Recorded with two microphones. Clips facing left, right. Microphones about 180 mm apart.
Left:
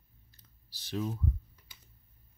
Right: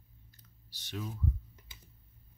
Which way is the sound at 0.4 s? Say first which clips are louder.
Even; 30° left (ahead or behind).